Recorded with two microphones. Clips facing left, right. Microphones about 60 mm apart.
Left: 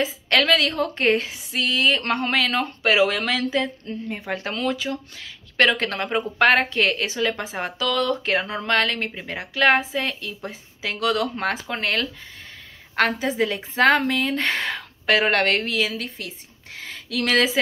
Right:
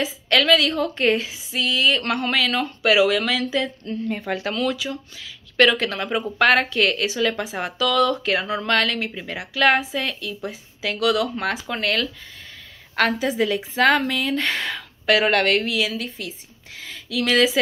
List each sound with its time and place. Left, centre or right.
0.0 s a woman's voice: left
4.1 s speech: centre
4.4 s a woman's voice: left
6.1 s a woman's voice: left